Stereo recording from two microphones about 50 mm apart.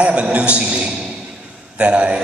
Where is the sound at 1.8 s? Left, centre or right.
Right.